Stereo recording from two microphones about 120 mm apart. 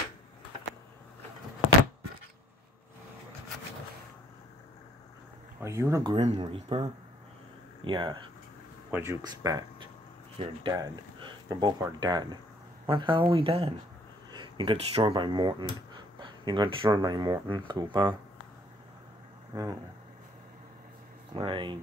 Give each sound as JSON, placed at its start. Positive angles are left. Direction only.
{"t": 5.6, "sound": "speech", "side_deg": -25}
{"t": 6.1, "sound": "speech", "side_deg": -60}
{"t": 6.4, "sound": "speech", "side_deg": -45}
{"t": 8.9, "sound": "speech", "side_deg": -20}
{"t": 10.3, "sound": "speech", "side_deg": -50}
{"t": 10.7, "sound": "speech", "side_deg": -40}
{"t": 14.3, "sound": "a sound", "side_deg": -45}
{"t": 15.0, "sound": "speech", "side_deg": -40}
{"t": 19.5, "sound": "speech", "side_deg": -30}
{"t": 21.3, "sound": "speech", "side_deg": -45}